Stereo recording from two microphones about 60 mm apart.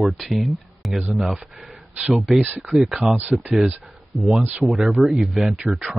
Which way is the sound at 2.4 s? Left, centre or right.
Right.